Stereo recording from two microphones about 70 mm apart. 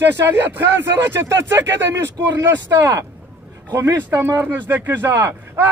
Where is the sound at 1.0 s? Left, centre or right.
Right.